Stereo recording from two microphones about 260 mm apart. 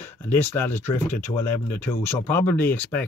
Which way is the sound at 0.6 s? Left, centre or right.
Centre.